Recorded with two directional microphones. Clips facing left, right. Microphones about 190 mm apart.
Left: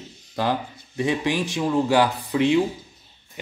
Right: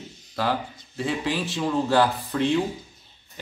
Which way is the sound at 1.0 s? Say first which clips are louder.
Left 3 dB; 15° left (ahead or behind).